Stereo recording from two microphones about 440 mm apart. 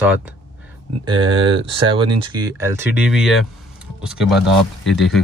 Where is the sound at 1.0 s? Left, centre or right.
Centre.